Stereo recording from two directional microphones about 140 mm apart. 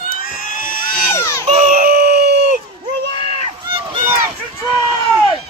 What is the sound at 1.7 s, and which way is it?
Wail, 90° right.